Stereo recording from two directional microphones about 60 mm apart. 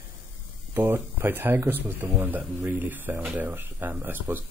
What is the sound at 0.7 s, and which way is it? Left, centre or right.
Speech, right.